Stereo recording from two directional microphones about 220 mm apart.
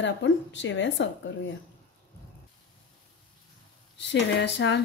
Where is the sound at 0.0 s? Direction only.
55° left (ahead or behind).